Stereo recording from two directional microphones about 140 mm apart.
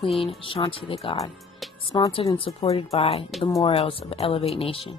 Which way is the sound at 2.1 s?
40° left (ahead or behind).